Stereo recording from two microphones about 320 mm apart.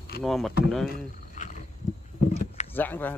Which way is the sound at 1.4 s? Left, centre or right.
Left.